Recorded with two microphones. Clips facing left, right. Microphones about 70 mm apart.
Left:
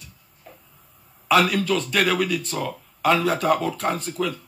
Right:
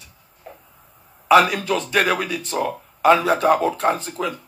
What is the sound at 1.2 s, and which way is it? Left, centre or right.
Speech, right.